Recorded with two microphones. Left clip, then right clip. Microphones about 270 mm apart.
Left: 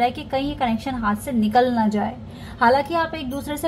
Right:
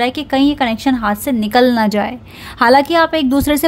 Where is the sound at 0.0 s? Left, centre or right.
Right.